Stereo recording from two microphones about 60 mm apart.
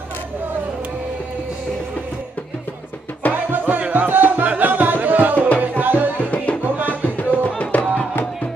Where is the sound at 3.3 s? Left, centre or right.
Right.